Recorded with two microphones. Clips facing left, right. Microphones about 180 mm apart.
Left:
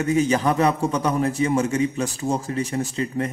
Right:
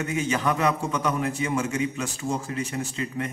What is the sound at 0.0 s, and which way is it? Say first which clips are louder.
A man's voice: left 6 dB; 35° left (ahead or behind).